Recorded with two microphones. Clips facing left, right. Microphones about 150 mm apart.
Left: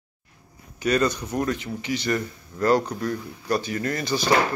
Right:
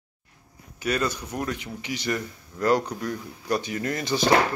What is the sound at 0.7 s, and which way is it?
Speech, 5° right (ahead or behind).